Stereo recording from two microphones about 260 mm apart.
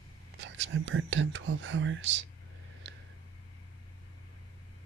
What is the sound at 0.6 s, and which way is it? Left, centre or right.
Speech, right.